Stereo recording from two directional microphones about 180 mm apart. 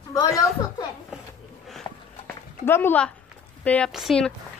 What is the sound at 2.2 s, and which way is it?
Dog, 15° left (ahead or behind).